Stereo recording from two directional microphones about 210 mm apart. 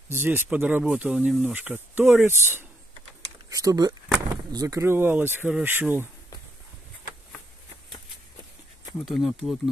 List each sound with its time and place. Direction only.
0.1 s speech: 10° right (ahead or behind)
9.0 s speech: centre (ahead or behind)